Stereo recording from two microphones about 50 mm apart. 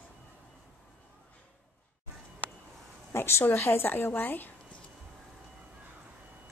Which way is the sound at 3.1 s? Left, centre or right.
Left.